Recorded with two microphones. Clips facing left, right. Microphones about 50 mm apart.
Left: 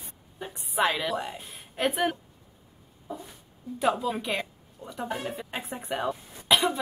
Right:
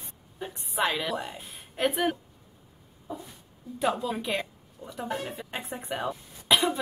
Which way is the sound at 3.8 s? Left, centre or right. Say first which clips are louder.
Left 2 dB; centre.